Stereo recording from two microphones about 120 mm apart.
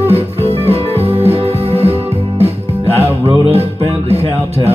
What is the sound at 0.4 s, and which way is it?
Music, 55° right (ahead or behind).